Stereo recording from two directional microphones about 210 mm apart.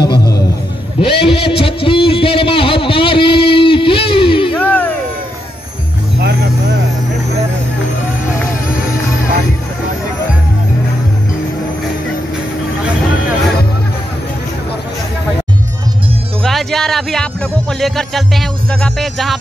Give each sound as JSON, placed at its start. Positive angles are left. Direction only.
{"t": 0.0, "sound": "a sound", "side_deg": 20}
{"t": 4.6, "sound": "music", "side_deg": 5}
{"t": 6.1, "sound": "vehicle", "side_deg": -50}
{"t": 16.4, "sound": "speech", "side_deg": 0}